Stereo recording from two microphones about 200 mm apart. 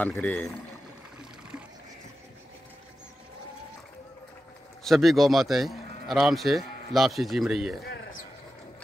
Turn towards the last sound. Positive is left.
turn(degrees=0)  # may be behind; listen again after turning